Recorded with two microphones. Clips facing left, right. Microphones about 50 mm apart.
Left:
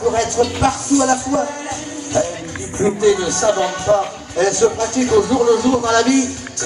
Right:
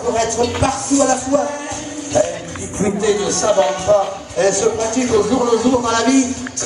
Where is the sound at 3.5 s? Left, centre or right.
Right.